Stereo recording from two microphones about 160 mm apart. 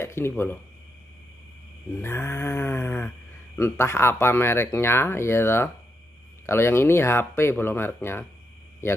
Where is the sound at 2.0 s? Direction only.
15° left (ahead or behind).